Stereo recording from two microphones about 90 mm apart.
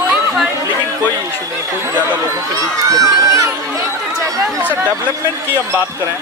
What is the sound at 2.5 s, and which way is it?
Speech, 40° right (ahead or behind).